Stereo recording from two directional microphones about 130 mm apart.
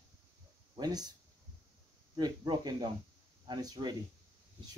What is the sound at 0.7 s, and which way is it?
Speech, 30° right (ahead or behind).